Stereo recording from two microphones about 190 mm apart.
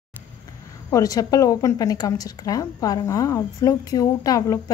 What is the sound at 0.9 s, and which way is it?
A woman's voice, 20° left (ahead or behind).